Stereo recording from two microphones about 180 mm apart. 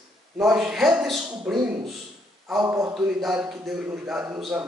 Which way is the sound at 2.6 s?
20° right (ahead or behind).